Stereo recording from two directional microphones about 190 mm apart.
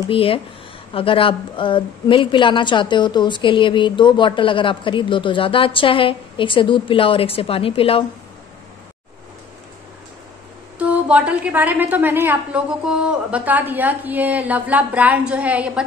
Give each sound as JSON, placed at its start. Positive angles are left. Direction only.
{"t": 0.1, "sound": "a woman's voice", "side_deg": 30}
{"t": 10.8, "sound": "a woman's voice", "side_deg": -5}